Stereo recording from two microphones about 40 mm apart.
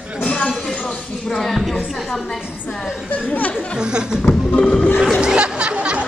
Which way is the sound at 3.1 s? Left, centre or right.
Left.